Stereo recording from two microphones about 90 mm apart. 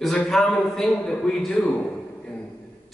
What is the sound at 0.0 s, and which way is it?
A man's voice, 5° left (ahead or behind).